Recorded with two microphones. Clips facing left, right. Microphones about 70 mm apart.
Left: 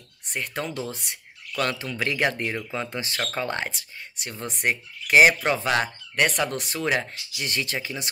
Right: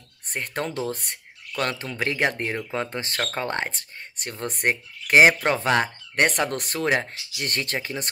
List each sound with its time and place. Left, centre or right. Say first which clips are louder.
0.3 s speech: right 1 dB; right
6.5 s speech: right 2 dB; right
6.9 s speech: right 1 dB; right
7.4 s speech: right 1 dB; right